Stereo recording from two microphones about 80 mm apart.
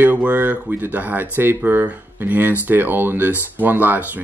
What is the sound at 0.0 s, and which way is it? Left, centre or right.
Speech, centre.